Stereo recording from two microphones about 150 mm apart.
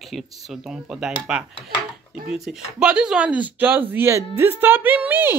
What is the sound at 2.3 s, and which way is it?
Speech, 5° right (ahead or behind).